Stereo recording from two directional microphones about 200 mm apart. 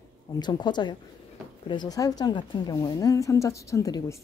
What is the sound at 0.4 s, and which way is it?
A woman's voice, 20° left (ahead or behind).